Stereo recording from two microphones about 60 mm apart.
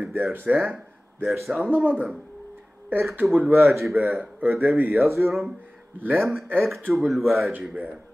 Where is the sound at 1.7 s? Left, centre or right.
Right.